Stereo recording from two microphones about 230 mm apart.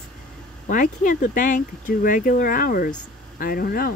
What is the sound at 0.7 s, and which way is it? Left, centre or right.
Speech, left.